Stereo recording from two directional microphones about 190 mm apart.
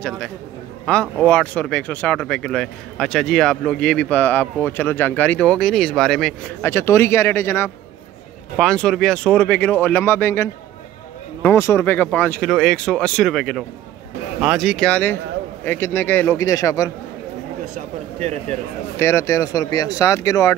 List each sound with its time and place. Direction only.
1.1 s speech: 5° left (ahead or behind)
6.7 s speech: 15° left (ahead or behind)
17.7 s speech: 35° right (ahead or behind)
18.9 s speech: 15° left (ahead or behind)